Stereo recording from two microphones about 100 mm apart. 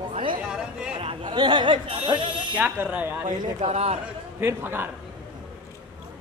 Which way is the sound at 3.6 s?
90° right.